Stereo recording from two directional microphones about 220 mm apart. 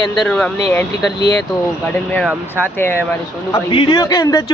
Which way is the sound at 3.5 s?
20° left (ahead or behind).